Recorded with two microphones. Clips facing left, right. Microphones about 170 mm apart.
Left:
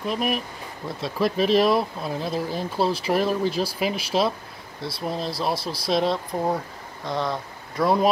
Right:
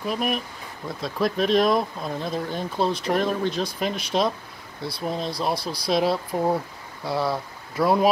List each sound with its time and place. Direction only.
0.0 s speech: centre (ahead or behind)